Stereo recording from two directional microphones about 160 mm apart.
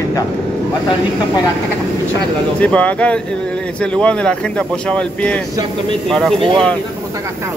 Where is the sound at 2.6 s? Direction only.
10° left (ahead or behind).